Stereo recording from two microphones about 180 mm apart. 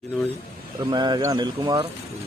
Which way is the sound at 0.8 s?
25° right (ahead or behind).